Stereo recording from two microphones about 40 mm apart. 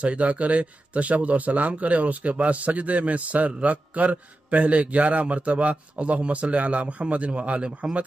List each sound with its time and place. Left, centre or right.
0.0 s speech: right